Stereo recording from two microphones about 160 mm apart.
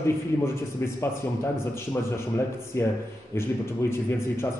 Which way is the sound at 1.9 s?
15° left (ahead or behind).